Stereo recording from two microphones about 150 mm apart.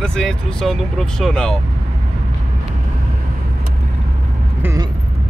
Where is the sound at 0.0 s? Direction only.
5° left (ahead or behind).